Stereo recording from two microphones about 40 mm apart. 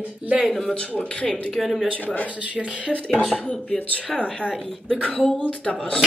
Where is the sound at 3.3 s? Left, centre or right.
Left.